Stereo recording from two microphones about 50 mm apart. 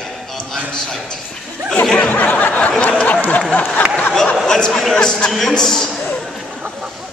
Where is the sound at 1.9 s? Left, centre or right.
Left.